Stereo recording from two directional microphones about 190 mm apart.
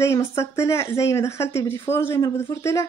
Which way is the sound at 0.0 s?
15° left (ahead or behind).